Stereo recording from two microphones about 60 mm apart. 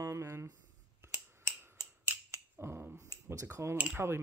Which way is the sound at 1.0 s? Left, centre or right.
Right.